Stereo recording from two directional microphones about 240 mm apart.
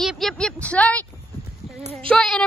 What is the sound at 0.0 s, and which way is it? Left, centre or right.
Speech, centre.